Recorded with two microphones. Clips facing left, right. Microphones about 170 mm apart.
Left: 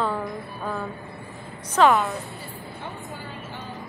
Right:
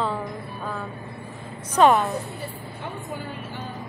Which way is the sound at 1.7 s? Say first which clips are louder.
Right 1 dB; 20° right (ahead or behind).